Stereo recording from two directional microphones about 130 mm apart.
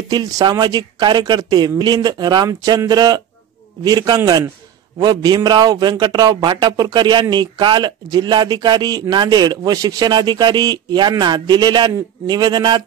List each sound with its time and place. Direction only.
0.1 s speech: 30° right (ahead or behind)